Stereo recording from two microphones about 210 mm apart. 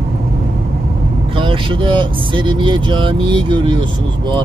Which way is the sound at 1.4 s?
25° right (ahead or behind).